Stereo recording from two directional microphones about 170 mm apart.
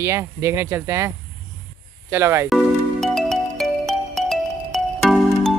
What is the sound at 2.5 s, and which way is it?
Music, centre (ahead or behind).